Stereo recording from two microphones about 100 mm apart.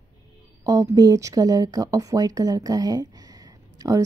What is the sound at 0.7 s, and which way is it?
Speech, 40° right (ahead or behind).